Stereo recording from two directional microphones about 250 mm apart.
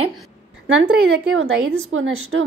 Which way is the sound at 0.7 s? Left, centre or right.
Right.